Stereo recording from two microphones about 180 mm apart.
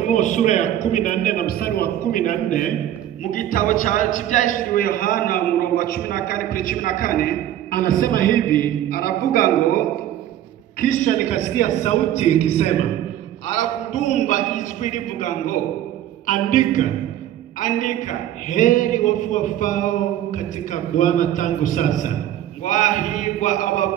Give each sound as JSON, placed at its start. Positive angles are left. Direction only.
{"t": 0.0, "sound": "a man's voice", "side_deg": 40}